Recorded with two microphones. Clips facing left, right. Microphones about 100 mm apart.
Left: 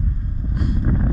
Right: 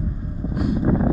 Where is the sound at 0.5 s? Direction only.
5° right (ahead or behind).